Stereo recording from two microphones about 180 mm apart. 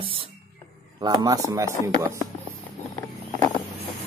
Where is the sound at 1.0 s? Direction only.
20° right (ahead or behind).